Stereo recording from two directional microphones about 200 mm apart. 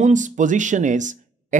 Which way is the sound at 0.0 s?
40° right (ahead or behind).